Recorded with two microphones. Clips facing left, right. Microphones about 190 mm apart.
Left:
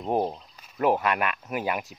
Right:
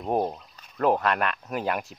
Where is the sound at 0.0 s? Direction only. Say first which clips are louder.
Even; 5° right (ahead or behind).